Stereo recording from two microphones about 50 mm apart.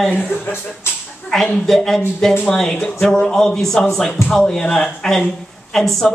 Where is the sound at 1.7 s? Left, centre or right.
Centre.